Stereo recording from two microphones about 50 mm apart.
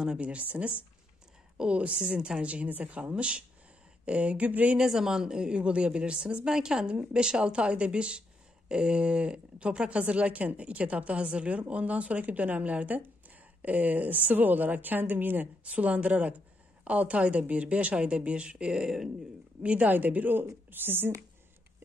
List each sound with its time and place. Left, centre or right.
0.2 s a woman's voice: right
4.7 s a woman's voice: centre
19.6 s a woman's voice: right
19.9 s a woman's voice: right